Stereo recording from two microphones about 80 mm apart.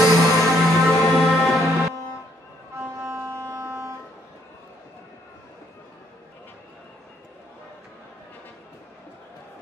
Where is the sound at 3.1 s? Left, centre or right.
Right.